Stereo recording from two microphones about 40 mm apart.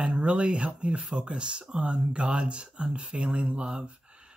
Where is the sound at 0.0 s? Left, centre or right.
Right.